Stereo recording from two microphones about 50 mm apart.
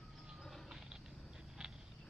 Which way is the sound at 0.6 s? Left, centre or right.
Centre.